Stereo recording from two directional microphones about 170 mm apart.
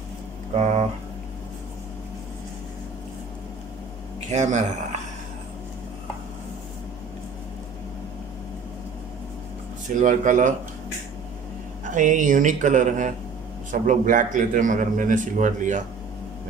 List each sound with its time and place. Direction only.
4.3 s speech: 45° right (ahead or behind)
9.9 s a man's voice: 50° right (ahead or behind)
11.8 s a man's voice: 50° right (ahead or behind)